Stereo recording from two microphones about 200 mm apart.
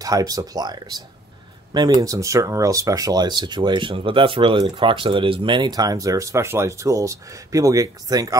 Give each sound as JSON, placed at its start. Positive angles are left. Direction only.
{"t": 0.0, "sound": "speech", "side_deg": -20}